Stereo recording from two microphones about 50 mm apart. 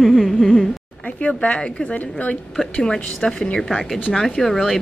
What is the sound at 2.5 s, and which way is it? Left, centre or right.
A woman's voice, centre.